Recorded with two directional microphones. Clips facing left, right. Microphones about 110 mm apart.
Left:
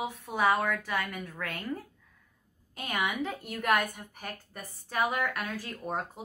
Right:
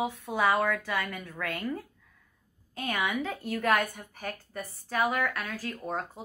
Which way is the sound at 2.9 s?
15° left (ahead or behind).